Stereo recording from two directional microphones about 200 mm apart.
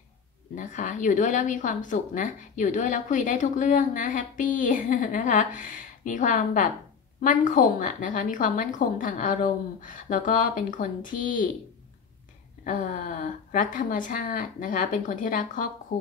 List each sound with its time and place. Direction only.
0.6 s speech: 40° left (ahead or behind)
12.6 s speech: 40° left (ahead or behind)